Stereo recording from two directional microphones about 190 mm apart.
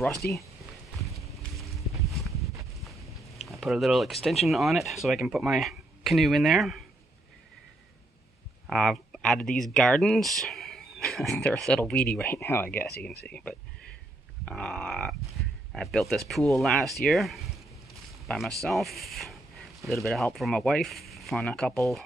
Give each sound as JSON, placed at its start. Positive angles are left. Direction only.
{"t": 0.2, "sound": "speech", "side_deg": 55}
{"t": 1.0, "sound": "a sound", "side_deg": 0}
{"t": 4.5, "sound": "speech", "side_deg": 0}
{"t": 8.6, "sound": "speech", "side_deg": 0}